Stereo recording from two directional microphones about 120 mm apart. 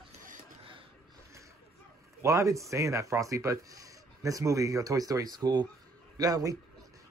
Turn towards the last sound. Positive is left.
turn(degrees=-30)  # may be behind; listen again after turning